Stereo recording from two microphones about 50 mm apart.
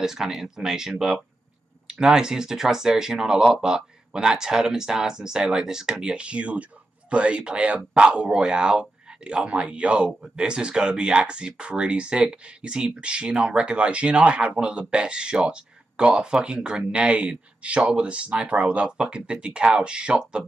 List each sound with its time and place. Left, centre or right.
0.0 s speech: centre